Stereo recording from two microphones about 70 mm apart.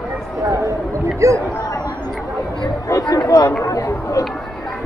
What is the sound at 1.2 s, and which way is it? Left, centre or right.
Speech, right.